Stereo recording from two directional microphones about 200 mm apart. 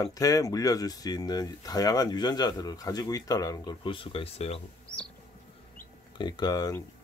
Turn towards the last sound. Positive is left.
turn(degrees=20)  # may be behind; listen again after turning